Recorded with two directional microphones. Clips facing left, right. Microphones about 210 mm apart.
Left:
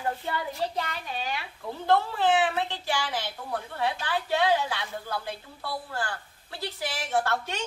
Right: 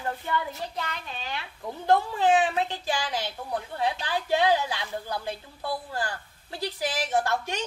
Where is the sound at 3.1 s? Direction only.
15° right (ahead or behind).